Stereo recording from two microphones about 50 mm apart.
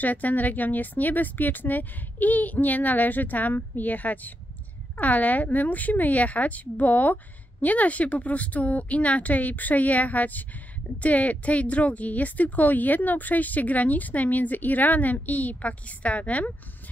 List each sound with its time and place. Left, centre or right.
0.0 s a woman's voice: left